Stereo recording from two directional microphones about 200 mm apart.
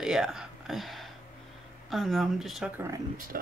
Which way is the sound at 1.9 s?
Centre (ahead or behind).